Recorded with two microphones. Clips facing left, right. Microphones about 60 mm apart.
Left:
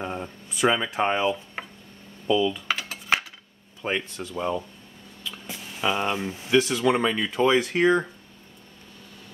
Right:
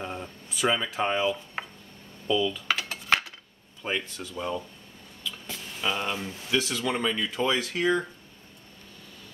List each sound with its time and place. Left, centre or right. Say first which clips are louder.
0.0 s speech: left 4 dB; centre
2.7 s computer keyboard: even; centre
3.8 s speech: left 3 dB; left
5.2 s a sound: left 1 dB; centre
6.6 s speech: left 6 dB; centre